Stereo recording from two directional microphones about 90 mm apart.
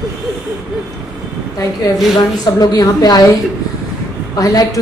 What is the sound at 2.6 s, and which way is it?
Speech, 45° left (ahead or behind).